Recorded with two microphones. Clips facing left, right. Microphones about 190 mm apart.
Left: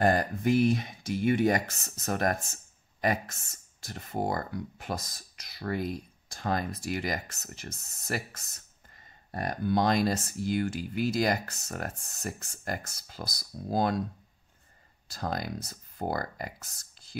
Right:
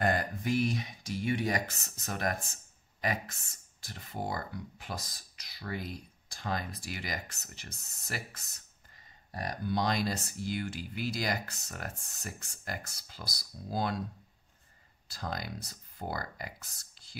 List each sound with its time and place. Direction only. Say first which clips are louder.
0.0 s speech: left 5 dB; 40° left (ahead or behind)
15.1 s speech: left 5 dB; 50° left (ahead or behind)